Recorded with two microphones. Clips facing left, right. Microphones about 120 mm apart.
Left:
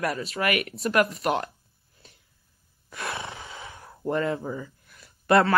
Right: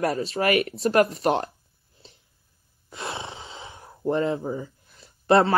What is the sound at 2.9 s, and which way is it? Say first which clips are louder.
Roar: even; 25° right (ahead or behind).